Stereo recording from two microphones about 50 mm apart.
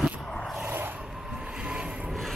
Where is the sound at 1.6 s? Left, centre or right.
Centre.